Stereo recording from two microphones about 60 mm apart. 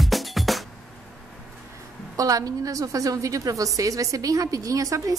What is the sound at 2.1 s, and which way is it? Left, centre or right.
A woman's voice, right.